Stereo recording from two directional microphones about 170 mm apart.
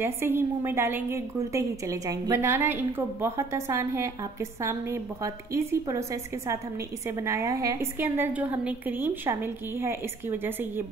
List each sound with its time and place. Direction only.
0.0 s a woman's voice: 15° right (ahead or behind)